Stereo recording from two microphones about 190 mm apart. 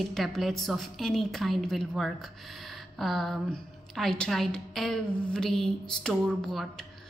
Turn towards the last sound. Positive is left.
turn(degrees=0)  # may be behind; listen again after turning